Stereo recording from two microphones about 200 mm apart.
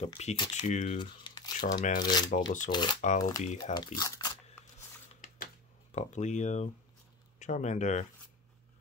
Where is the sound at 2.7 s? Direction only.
45° left (ahead or behind).